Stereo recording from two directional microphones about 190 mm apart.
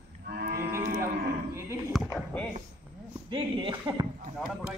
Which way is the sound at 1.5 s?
15° right (ahead or behind).